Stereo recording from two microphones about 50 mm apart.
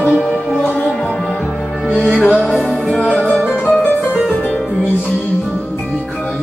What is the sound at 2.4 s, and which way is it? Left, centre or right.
Music, centre.